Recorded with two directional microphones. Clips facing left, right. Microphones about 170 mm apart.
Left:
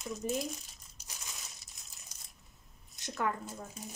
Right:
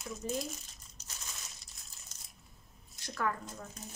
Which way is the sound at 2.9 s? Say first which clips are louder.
Left 1 dB; 20° left (ahead or behind).